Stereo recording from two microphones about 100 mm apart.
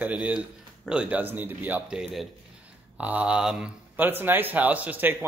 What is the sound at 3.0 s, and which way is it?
Speech, 15° right (ahead or behind).